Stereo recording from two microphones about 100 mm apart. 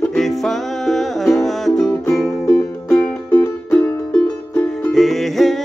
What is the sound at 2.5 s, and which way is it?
Music, 15° left (ahead or behind).